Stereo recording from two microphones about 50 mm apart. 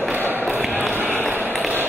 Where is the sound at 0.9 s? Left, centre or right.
Right.